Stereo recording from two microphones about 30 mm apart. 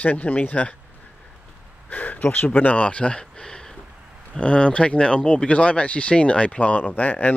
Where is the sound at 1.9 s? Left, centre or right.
Left.